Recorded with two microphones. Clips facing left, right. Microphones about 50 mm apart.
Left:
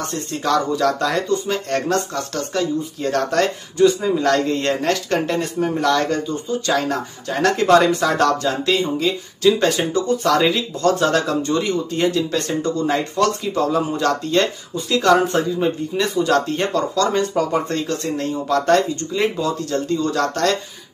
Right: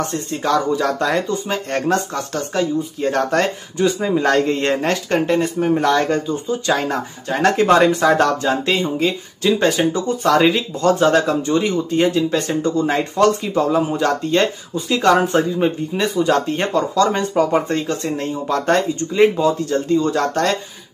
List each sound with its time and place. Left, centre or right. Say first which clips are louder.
0.1 s speech: right 1 dB; centre
4.0 s speech: right 1 dB; right